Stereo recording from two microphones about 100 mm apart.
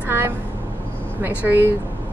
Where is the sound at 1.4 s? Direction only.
20° right (ahead or behind).